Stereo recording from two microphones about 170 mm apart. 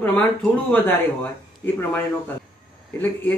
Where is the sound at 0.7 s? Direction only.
10° left (ahead or behind).